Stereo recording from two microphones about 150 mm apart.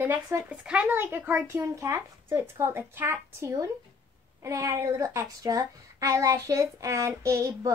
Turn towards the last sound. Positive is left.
turn(degrees=-20)  # may be behind; listen again after turning